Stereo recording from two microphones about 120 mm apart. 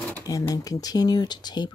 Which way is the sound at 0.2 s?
30° left (ahead or behind).